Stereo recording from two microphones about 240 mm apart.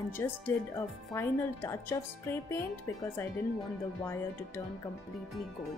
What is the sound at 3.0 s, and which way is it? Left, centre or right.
Speech, centre.